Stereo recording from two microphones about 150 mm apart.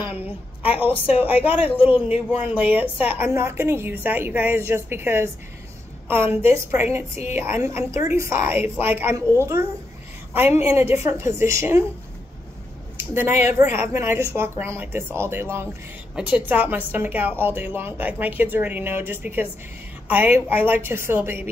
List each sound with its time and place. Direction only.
1.0 s a woman's voice: 10° right (ahead or behind)
12.9 s a sound: 15° right (ahead or behind)
13.5 s a woman's voice: 20° right (ahead or behind)